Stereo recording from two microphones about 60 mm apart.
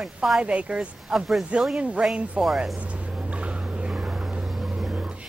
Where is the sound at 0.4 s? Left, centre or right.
Right.